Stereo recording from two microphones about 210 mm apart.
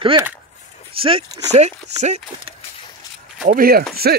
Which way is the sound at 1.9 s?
30° right (ahead or behind).